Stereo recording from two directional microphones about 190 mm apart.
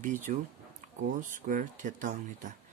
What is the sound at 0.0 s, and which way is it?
Speech, 40° right (ahead or behind).